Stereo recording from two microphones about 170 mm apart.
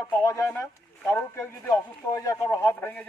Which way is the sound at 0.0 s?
20° left (ahead or behind).